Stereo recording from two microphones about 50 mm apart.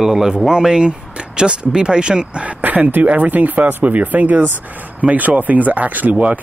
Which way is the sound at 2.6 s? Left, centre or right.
Right.